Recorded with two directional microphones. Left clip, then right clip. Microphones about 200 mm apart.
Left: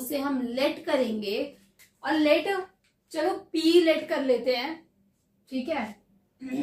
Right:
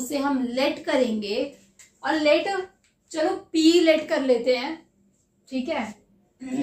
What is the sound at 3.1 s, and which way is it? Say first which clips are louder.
A woman's voice: right 3 dB; 20° right (ahead or behind).